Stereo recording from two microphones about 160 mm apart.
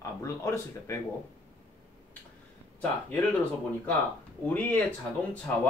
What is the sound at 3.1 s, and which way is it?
Speech, 10° left (ahead or behind).